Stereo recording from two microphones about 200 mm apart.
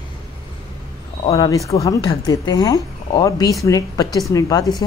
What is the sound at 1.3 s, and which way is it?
A woman's voice, 15° left (ahead or behind).